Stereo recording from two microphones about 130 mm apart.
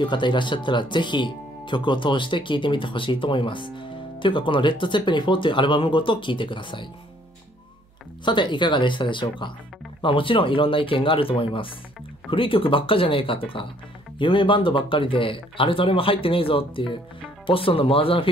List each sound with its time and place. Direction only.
0.0 s speech: 35° left (ahead or behind)
8.3 s speech: 35° left (ahead or behind)